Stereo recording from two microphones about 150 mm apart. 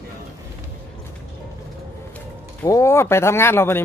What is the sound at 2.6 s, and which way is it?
Speech, 20° left (ahead or behind).